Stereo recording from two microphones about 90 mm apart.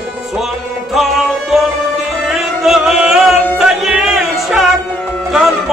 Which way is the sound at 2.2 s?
5° right (ahead or behind).